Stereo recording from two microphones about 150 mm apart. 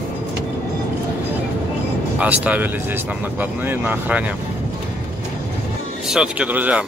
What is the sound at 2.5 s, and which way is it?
Speech, 10° right (ahead or behind).